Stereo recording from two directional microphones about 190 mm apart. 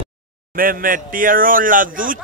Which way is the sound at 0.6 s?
50° right (ahead or behind).